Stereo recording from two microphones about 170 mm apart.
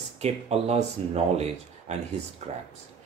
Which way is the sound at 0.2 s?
40° right (ahead or behind).